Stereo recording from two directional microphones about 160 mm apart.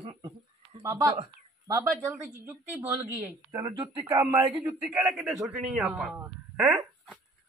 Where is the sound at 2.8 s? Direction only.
20° right (ahead or behind).